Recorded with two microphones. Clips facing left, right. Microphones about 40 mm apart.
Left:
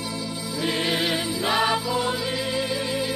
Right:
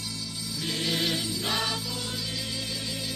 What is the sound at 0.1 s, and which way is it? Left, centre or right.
Music, left.